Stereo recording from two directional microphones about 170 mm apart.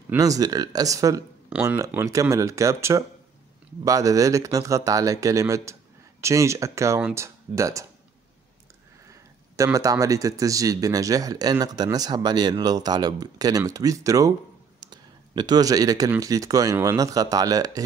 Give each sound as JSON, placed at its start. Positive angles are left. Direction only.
{"t": 0.1, "sound": "speech", "side_deg": -20}
{"t": 9.1, "sound": "speech", "side_deg": -20}